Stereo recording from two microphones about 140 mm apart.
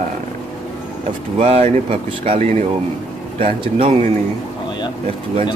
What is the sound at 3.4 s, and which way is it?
Speech, 40° right (ahead or behind).